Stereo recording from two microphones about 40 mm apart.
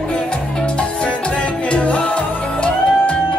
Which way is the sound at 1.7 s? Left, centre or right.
Left.